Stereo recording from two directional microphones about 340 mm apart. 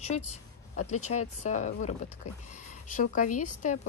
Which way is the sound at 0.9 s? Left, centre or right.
Left.